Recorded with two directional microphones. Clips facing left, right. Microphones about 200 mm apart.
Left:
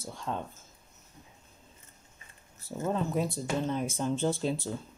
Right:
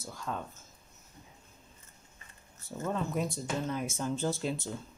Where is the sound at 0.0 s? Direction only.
30° left (ahead or behind).